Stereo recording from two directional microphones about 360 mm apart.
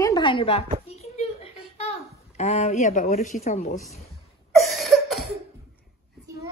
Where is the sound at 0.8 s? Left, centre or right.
Centre.